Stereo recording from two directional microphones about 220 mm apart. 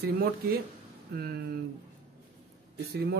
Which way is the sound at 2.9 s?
45° right (ahead or behind).